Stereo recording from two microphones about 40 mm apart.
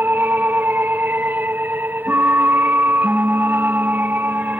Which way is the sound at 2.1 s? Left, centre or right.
Right.